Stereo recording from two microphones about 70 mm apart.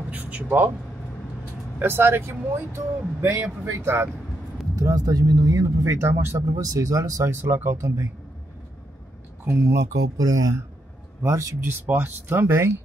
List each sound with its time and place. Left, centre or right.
0.1 s a man's voice: right
1.8 s speech: right
4.7 s speech: right
6.4 s speech: right
9.4 s speech: right
10.1 s speech: right
11.2 s speech: right
11.6 s speech: right